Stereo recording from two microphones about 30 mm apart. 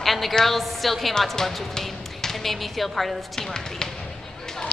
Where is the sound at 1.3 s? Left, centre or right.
Centre.